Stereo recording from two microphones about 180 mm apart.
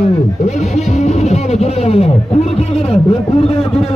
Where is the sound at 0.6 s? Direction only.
Centre (ahead or behind).